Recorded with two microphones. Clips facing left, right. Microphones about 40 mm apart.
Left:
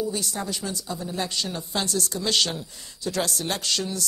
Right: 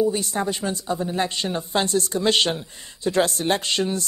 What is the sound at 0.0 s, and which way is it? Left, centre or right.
Speech, right.